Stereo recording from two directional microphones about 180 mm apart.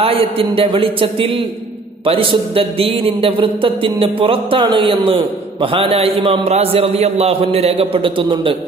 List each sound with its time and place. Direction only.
0.0 s a man's voice: 30° right (ahead or behind)